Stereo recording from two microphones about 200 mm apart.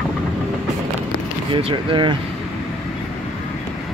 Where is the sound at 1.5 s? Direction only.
25° right (ahead or behind).